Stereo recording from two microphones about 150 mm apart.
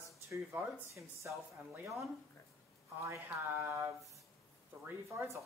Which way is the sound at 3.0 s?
15° right (ahead or behind).